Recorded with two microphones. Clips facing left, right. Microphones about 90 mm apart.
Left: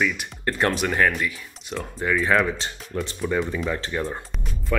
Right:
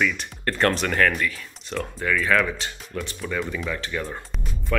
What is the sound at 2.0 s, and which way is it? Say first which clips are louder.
Speech: left 1 dB; 25° left (ahead or behind).